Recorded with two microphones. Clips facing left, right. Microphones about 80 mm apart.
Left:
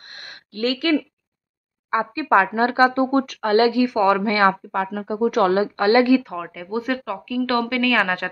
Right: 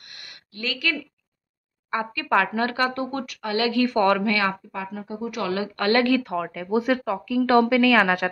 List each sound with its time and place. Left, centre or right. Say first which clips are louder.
0.0 s a sound: left 6 dB; left
0.7 s a woman's voice: left 8 dB; left
1.9 s speech: left 5 dB; left
3.8 s speech: left 2 dB; centre
4.2 s a woman's voice: left 6 dB; left
4.7 s speech: left 8 dB; left
5.4 s a woman's voice: left 8 dB; left
5.8 s speech: left 3 dB; left
6.2 s a woman's voice: right 3 dB; centre